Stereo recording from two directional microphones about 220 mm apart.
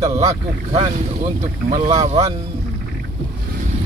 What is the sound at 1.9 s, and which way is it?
Speech, 15° right (ahead or behind).